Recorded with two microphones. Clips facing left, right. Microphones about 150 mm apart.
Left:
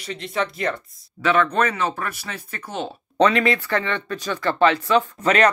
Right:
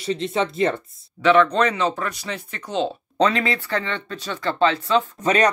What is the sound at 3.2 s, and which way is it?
Speech, 25° right (ahead or behind).